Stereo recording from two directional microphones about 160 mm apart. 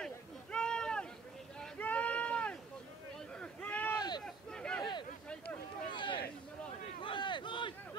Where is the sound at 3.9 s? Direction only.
25° left (ahead or behind).